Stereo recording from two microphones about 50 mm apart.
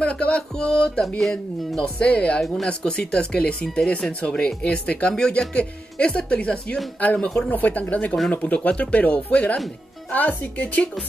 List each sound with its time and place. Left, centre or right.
0.0 s speech: left
2.4 s speech: centre
2.8 s speech: centre
7.0 s speech: left